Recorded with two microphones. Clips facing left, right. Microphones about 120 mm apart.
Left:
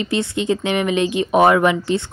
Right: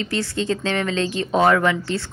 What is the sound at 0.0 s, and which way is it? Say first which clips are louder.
Speech: left 3 dB; 20° left (ahead or behind).